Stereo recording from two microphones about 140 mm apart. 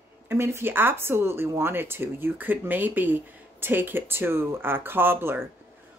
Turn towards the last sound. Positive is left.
turn(degrees=-15)  # may be behind; listen again after turning